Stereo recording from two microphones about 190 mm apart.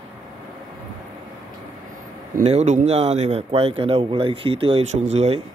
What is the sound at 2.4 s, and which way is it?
Speech, 35° right (ahead or behind).